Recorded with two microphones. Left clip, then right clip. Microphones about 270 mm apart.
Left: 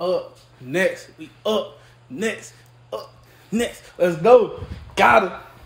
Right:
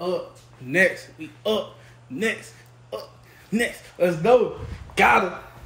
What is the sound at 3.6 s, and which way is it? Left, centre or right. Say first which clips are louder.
Speech: left 1 dB; centre.